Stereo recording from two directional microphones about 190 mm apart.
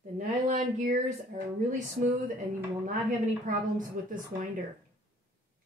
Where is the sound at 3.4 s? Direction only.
45° right (ahead or behind).